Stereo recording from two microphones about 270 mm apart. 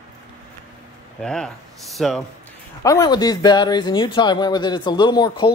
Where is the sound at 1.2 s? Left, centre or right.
Centre.